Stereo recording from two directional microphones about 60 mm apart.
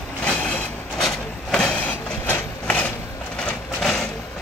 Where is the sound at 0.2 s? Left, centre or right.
Left.